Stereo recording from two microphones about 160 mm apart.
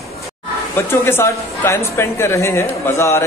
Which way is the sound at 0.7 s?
15° left (ahead or behind).